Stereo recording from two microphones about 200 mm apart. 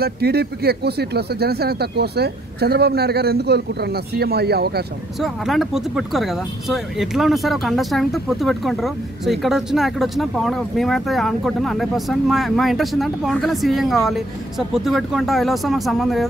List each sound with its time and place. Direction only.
0.0 s speech: 55° right (ahead or behind)
5.2 s speech: centre (ahead or behind)